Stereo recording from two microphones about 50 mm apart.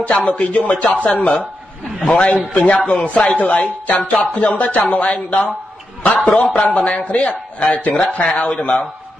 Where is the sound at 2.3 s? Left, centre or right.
Left.